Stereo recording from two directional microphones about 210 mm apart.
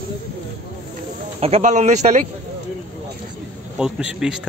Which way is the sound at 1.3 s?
30° right (ahead or behind).